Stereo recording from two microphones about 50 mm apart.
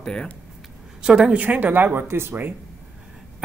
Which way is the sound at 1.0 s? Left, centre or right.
Centre.